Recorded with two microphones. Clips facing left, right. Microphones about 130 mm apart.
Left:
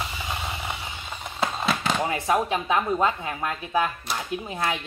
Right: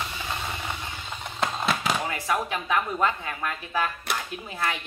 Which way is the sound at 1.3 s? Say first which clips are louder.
Left 1 dB; centre (ahead or behind).